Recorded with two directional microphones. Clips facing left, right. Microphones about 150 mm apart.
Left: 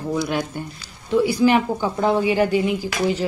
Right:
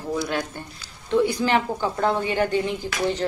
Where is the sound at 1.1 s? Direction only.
10° left (ahead or behind).